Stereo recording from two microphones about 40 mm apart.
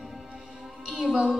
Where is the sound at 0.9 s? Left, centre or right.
Centre.